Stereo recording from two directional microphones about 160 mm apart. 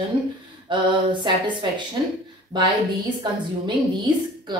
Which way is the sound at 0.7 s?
30° right (ahead or behind).